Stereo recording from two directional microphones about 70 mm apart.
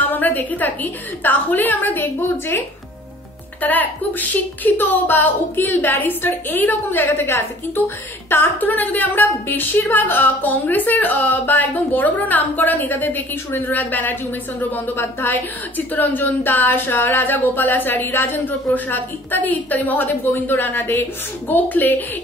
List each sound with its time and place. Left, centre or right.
0.1 s speech: left
3.6 s speech: left